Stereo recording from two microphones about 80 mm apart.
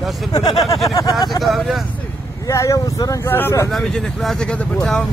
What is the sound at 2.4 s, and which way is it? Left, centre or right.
Vehicle, left.